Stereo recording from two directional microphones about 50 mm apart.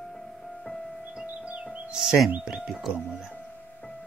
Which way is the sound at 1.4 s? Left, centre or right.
Right.